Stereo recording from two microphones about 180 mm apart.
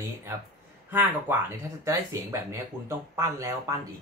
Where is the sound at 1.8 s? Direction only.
15° right (ahead or behind).